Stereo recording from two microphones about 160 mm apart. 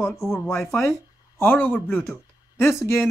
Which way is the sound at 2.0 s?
15° left (ahead or behind).